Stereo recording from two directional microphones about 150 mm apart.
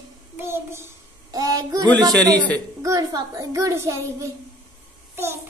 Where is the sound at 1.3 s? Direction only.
25° right (ahead or behind).